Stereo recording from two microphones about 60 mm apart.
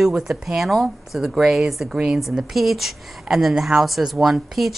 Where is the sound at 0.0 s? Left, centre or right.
Centre.